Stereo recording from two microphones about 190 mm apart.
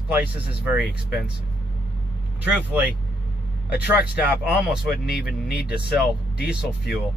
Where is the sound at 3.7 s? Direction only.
5° right (ahead or behind).